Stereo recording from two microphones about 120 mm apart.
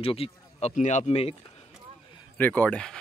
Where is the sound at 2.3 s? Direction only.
15° left (ahead or behind).